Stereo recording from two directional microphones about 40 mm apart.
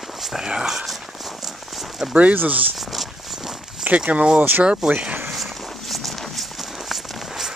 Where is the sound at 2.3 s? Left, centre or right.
Right.